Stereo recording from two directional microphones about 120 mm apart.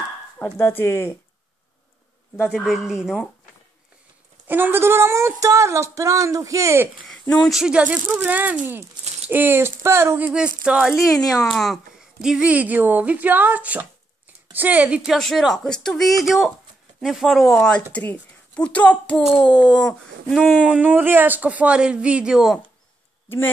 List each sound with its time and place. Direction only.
0.4 s speech: 20° left (ahead or behind)
2.5 s speech: centre (ahead or behind)
4.5 s speech: 15° right (ahead or behind)
7.1 s speech: 5° left (ahead or behind)
7.5 s a child's voice: 10° right (ahead or behind); by 19.9 s 10° left (ahead or behind)
20.2 s speech: centre (ahead or behind)
20.6 s speech: 10° right (ahead or behind)
23.2 s speech: 20° left (ahead or behind)